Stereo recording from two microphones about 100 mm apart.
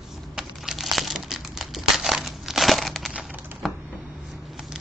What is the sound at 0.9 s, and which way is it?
Crumpling, centre (ahead or behind).